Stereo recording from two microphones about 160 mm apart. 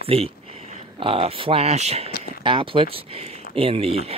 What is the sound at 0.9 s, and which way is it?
Speech, 35° right (ahead or behind).